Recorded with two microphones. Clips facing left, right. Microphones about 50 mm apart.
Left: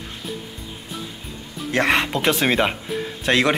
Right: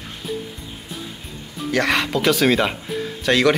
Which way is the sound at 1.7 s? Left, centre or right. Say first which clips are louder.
Even; left.